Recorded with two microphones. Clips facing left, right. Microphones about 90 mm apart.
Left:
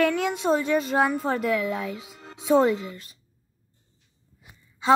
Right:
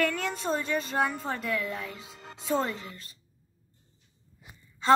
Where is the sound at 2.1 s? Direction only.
60° left (ahead or behind).